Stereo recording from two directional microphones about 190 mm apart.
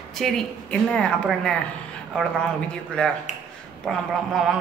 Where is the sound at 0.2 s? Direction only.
5° left (ahead or behind).